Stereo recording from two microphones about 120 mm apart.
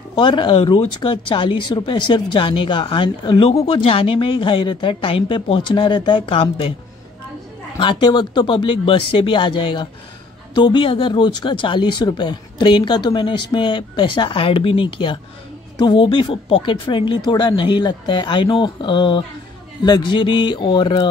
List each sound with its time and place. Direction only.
0.1 s speech: 40° left (ahead or behind)
7.8 s speech: 40° left (ahead or behind)